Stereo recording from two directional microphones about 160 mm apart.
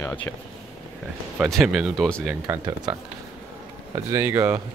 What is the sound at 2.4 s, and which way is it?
Speech, 25° right (ahead or behind).